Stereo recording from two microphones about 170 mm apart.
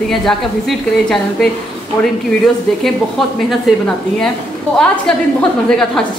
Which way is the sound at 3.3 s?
Centre (ahead or behind).